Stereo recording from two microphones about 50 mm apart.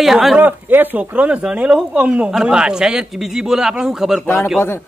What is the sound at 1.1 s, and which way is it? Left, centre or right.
Speech, right.